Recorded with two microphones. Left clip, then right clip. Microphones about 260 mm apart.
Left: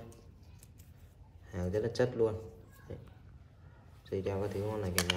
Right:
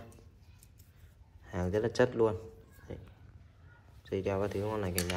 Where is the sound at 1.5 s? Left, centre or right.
Centre.